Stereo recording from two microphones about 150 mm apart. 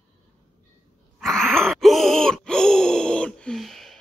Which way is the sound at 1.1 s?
Centre (ahead or behind).